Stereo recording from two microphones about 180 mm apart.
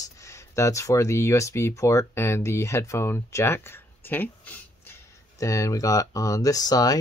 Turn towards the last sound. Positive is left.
turn(degrees=20)  # may be behind; listen again after turning